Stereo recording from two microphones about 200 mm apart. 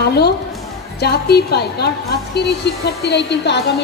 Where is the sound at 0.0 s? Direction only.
55° left (ahead or behind).